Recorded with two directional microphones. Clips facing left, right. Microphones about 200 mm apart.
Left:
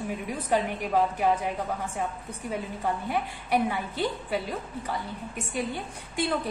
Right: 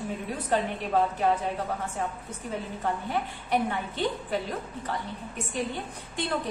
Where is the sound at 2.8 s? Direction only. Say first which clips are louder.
Even; 10° left (ahead or behind).